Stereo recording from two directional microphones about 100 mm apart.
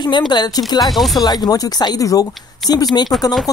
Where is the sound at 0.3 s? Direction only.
45° left (ahead or behind).